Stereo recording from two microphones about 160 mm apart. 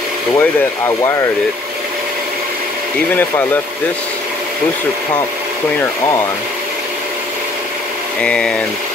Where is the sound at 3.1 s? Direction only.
10° left (ahead or behind).